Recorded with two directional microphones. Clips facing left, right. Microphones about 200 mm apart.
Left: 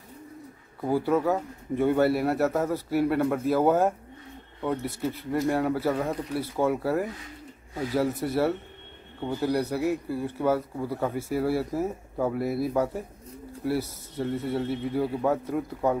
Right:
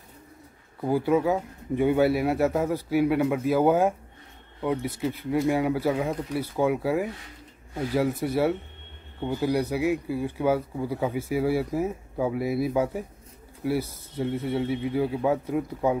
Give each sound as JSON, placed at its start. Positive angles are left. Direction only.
{"t": 0.7, "sound": "speech", "side_deg": 0}